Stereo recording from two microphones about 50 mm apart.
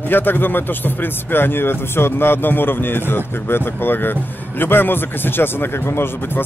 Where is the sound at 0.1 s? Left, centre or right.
Left.